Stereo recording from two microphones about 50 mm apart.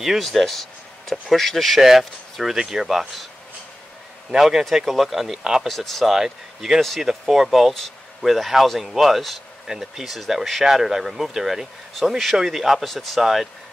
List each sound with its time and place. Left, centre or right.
0.0 s speech: centre
4.3 s speech: centre
5.7 s speech: centre